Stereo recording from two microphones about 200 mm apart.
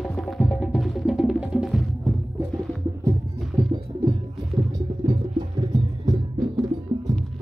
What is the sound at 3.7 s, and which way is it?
Music, 20° right (ahead or behind).